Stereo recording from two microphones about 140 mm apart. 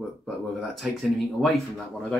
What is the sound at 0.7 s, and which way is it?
Speech, centre (ahead or behind).